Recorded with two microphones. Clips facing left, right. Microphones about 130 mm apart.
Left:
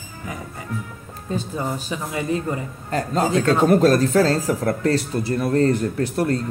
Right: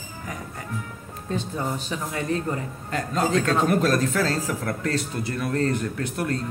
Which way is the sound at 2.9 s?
35° left (ahead or behind).